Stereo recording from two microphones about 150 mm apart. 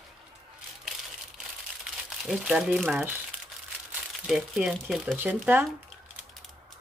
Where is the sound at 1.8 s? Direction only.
5° right (ahead or behind).